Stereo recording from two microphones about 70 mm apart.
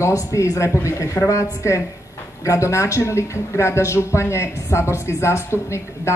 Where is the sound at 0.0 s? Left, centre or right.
Left.